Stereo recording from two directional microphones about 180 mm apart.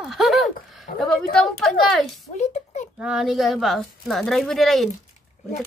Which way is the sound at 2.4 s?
40° left (ahead or behind).